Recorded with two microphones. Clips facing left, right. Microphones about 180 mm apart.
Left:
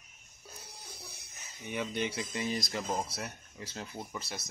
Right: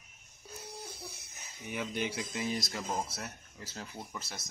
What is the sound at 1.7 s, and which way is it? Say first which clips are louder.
Speech: left 1 dB; 5° right (ahead or behind).